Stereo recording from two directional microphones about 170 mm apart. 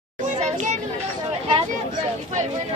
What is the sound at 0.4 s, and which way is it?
Children playing, 40° right (ahead or behind).